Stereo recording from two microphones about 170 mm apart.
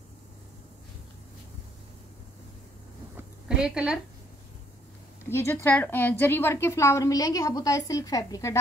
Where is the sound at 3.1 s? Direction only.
5° right (ahead or behind).